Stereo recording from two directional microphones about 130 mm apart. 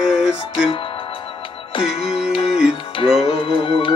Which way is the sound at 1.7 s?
50° left (ahead or behind).